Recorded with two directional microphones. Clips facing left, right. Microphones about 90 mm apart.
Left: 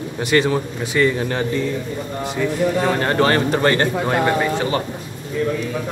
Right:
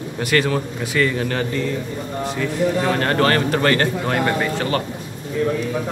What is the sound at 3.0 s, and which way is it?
Speech, 20° left (ahead or behind).